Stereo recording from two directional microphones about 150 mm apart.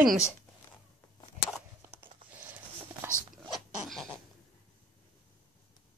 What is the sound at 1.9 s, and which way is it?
Whispering, 15° right (ahead or behind).